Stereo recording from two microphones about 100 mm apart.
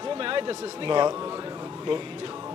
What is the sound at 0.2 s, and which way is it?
Speech, 60° right (ahead or behind).